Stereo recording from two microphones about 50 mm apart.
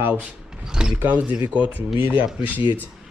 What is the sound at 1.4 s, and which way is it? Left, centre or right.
Speech, right.